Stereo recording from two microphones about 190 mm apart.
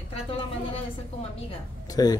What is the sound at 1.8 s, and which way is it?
Speech, 20° left (ahead or behind).